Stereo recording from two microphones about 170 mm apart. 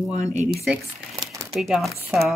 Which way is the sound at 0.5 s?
Centre (ahead or behind).